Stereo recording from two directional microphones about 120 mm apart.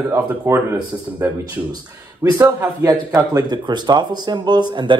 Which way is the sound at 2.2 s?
30° right (ahead or behind).